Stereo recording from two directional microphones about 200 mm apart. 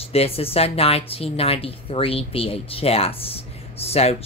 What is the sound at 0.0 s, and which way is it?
Speech, 30° left (ahead or behind).